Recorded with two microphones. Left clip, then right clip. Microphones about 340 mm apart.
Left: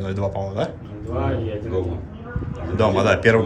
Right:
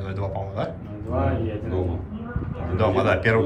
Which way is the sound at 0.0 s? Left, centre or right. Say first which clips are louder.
Left 5 dB; centre.